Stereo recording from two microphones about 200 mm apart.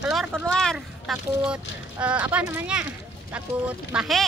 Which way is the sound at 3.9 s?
Centre (ahead or behind).